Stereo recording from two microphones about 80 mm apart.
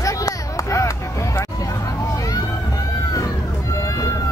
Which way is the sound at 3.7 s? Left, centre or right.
Left.